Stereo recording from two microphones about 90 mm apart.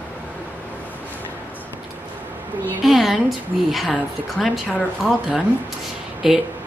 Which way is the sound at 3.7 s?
Centre (ahead or behind).